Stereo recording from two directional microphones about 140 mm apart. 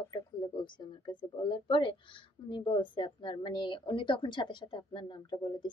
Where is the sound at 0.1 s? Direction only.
35° left (ahead or behind).